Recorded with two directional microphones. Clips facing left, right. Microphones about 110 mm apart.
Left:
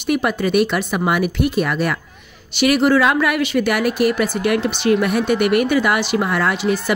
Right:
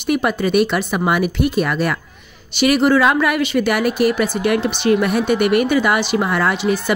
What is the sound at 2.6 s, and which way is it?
Speech, 25° right (ahead or behind).